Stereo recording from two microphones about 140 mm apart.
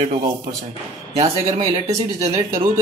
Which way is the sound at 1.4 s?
45° right (ahead or behind).